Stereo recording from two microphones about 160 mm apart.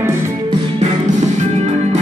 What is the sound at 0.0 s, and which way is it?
Music, 15° right (ahead or behind).